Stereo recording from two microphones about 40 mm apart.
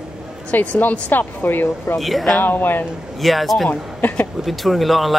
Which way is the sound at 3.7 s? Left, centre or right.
Left.